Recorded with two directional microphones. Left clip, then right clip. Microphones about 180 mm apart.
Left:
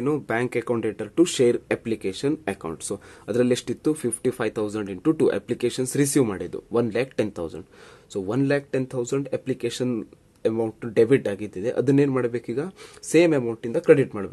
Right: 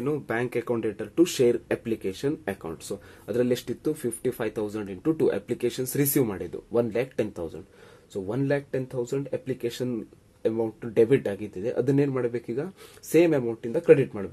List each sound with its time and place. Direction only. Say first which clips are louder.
0.0 s speech: left 4 dB; 30° left (ahead or behind)